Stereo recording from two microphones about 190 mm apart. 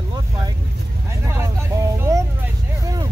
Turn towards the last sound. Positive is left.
turn(degrees=-20)  # may be behind; listen again after turning